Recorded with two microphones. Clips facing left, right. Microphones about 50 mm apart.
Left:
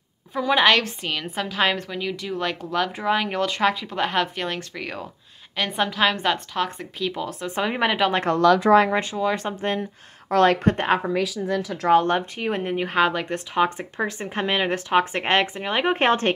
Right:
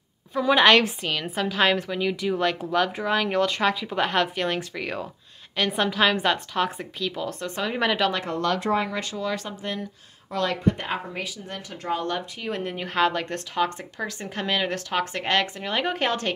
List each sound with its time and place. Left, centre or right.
0.4 s a woman's voice: centre
7.0 s speech: centre
7.5 s speech: left
8.3 s speech: left
8.9 s speech: left
9.5 s speech: left
10.3 s speech: left
11.9 s speech: left; by 13.4 s centre
13.6 s speech: left